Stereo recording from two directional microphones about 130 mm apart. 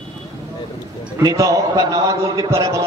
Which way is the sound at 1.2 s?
25° right (ahead or behind).